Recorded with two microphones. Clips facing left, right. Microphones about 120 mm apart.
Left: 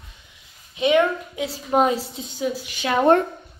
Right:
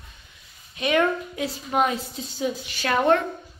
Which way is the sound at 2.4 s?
10° left (ahead or behind).